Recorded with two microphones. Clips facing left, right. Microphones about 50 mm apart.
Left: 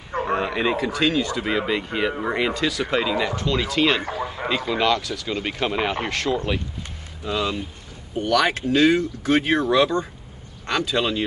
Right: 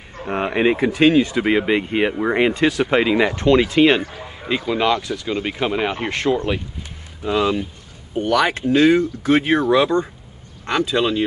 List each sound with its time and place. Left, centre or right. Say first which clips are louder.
0.3 s speech: right 5 dB; right
4.5 s speech: right 3 dB; centre
5.4 s speech: right 2 dB; centre
6.0 s speech: right 4 dB; right